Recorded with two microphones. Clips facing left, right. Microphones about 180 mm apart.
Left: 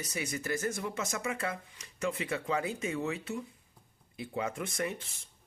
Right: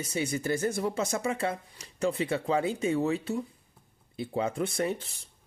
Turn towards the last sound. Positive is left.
turn(degrees=-35)  # may be behind; listen again after turning